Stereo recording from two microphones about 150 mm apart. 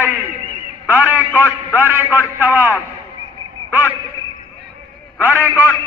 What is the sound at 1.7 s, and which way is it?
A man's voice, 15° right (ahead or behind).